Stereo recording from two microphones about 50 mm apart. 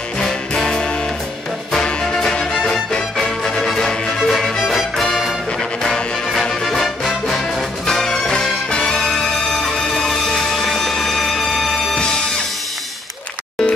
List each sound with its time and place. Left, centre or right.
0.2 s music: centre
4.2 s music: centre
5.8 s music: centre
6.4 s music: centre